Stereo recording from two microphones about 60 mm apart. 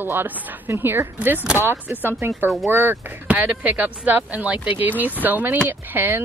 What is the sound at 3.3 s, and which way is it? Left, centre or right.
A woman's voice, right.